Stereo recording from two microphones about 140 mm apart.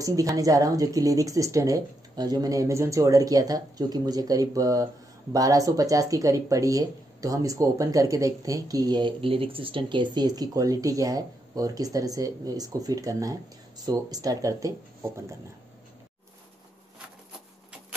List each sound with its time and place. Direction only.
0.0 s speech: 25° right (ahead or behind)